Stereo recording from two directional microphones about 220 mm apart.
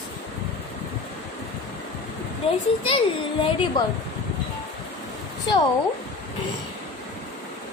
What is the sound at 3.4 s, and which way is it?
Speech, 25° left (ahead or behind).